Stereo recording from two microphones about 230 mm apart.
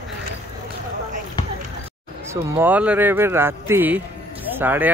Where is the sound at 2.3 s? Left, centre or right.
Centre.